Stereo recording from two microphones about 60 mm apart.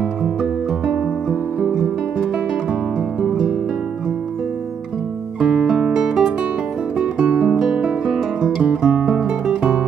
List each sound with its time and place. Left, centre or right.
0.2 s music: centre
3.2 s music: centre
5.4 s music: centre
7.4 s guitar: centre
8.8 s music: centre